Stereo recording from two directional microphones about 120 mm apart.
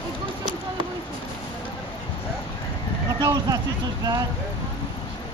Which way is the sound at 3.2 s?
30° right (ahead or behind).